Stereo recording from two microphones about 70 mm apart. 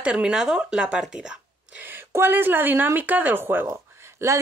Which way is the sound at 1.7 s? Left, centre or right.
Right.